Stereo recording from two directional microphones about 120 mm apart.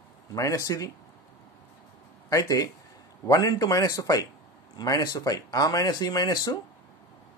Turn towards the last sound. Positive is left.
turn(degrees=30)  # may be behind; listen again after turning